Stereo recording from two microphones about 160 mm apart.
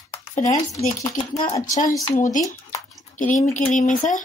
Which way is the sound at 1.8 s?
20° left (ahead or behind).